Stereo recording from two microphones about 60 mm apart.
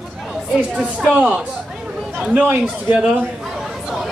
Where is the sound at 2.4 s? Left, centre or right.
Right.